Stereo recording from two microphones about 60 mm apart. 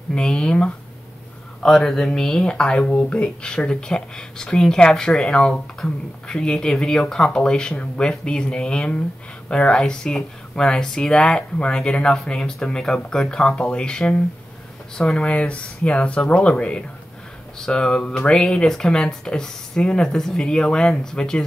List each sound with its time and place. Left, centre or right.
0.1 s speech: centre
15.3 s speech: left